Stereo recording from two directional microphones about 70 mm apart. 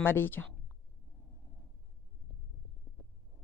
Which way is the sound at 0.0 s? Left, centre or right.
Left.